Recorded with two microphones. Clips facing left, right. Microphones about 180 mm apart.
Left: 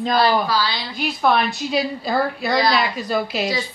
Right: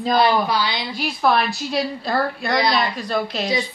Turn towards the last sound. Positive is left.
turn(degrees=5)  # may be behind; listen again after turning